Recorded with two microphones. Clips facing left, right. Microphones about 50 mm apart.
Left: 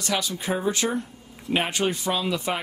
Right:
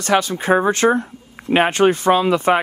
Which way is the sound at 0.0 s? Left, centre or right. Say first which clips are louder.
Right 10 dB; right.